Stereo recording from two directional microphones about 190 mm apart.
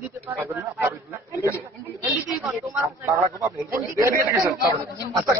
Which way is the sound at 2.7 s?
10° right (ahead or behind).